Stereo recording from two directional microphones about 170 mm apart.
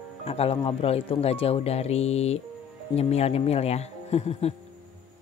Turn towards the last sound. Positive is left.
turn(degrees=40)  # may be behind; listen again after turning